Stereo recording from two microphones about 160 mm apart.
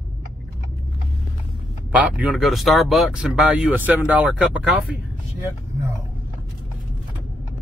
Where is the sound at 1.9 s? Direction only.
10° right (ahead or behind).